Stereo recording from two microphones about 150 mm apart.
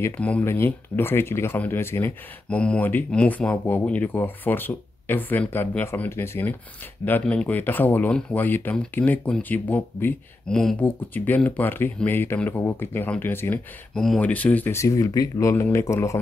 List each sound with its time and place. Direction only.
0.0 s speech: 10° left (ahead or behind)